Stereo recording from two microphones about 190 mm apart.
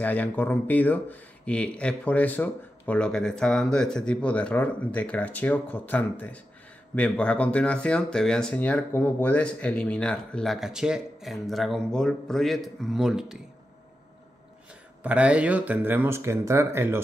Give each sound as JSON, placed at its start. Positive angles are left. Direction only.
{"t": 0.0, "sound": "speech", "side_deg": 10}
{"t": 15.0, "sound": "speech", "side_deg": -5}